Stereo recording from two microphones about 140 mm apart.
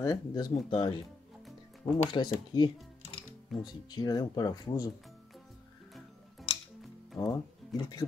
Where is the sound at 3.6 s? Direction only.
30° left (ahead or behind).